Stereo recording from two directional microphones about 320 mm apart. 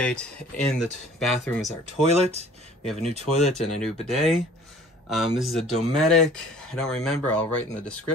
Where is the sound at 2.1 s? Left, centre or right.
Centre.